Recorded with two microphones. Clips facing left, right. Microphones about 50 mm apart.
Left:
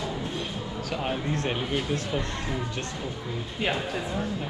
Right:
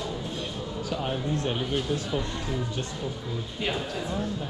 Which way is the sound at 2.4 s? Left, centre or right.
Left.